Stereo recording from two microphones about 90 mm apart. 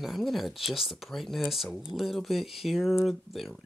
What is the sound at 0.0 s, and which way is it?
Speech, centre (ahead or behind).